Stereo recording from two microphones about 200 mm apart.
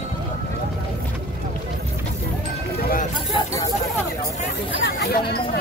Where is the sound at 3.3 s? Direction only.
15° left (ahead or behind).